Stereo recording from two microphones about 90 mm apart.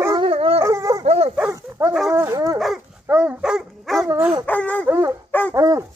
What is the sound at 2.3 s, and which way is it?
Dog, 45° right (ahead or behind).